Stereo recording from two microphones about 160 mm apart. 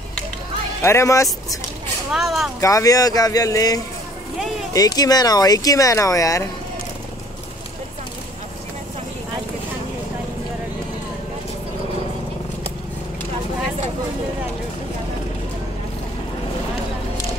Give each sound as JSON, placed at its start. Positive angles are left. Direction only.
{"t": 0.8, "sound": "speech", "side_deg": 20}
{"t": 2.1, "sound": "speech", "side_deg": 0}
{"t": 2.6, "sound": "speech", "side_deg": 20}